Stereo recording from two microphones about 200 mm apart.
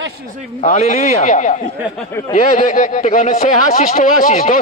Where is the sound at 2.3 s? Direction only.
40° left (ahead or behind).